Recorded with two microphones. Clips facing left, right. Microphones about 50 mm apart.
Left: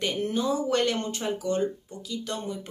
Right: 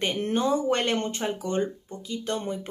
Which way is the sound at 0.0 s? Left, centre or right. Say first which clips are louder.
Right 2 dB; right.